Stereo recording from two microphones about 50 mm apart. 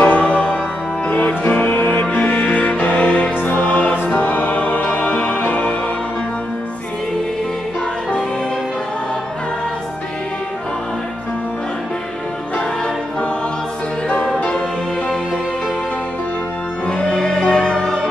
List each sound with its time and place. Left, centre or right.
0.0 s music: left
5.4 s music: left
16.8 s music: centre